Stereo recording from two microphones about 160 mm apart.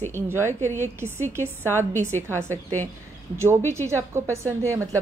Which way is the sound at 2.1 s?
10° left (ahead or behind).